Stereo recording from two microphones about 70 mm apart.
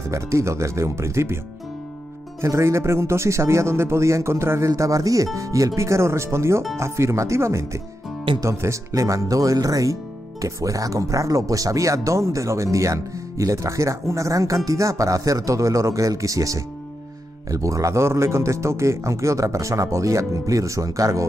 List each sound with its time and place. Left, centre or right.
0.1 s speech: right
2.4 s speech: right